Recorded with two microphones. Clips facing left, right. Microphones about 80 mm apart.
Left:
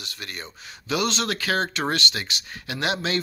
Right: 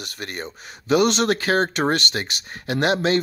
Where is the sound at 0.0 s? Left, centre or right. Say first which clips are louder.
Right 5 dB; right.